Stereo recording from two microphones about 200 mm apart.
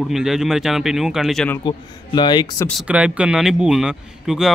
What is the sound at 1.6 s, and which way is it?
Speech, 20° left (ahead or behind).